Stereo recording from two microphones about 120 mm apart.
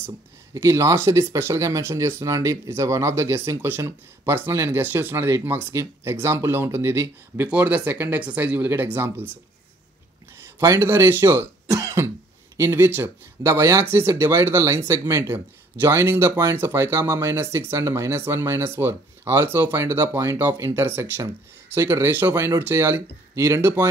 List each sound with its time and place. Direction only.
0.6 s speech: 25° right (ahead or behind)
10.3 s speech: 20° right (ahead or behind)